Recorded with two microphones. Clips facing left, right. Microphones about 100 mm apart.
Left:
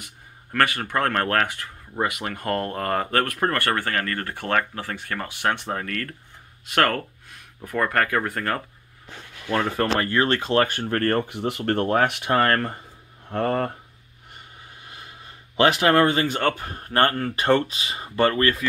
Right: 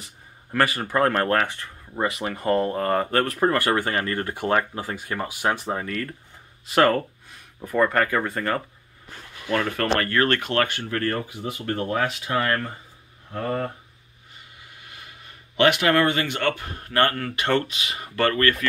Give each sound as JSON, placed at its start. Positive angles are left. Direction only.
{"t": 0.5, "sound": "speech", "side_deg": -5}
{"t": 1.5, "sound": "speech", "side_deg": 5}
{"t": 3.8, "sound": "speech", "side_deg": -20}
{"t": 9.8, "sound": "speech", "side_deg": 20}
{"t": 10.7, "sound": "speech", "side_deg": 45}
{"t": 13.3, "sound": "speech", "side_deg": 65}
{"t": 14.9, "sound": "speech", "side_deg": 30}